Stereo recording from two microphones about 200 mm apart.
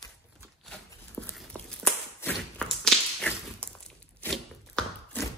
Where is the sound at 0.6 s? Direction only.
5° left (ahead or behind).